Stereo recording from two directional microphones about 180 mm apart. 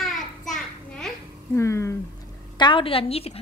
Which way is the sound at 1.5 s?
15° left (ahead or behind).